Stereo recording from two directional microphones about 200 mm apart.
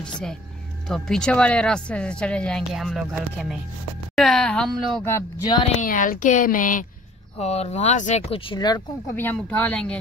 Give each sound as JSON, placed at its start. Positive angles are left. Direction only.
{"t": 0.8, "sound": "speech", "side_deg": 0}
{"t": 5.0, "sound": "speech", "side_deg": 15}
{"t": 5.7, "sound": "speech", "side_deg": 40}